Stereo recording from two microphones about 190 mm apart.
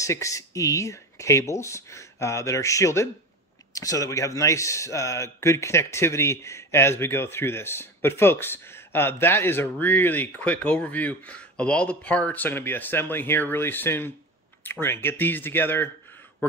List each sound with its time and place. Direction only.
0.0 s speech: 15° left (ahead or behind)